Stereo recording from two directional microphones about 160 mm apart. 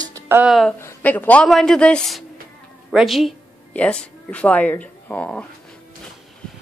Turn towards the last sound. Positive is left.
turn(degrees=10)  # may be behind; listen again after turning